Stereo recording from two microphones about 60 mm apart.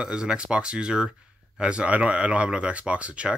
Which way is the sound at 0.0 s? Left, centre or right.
Centre.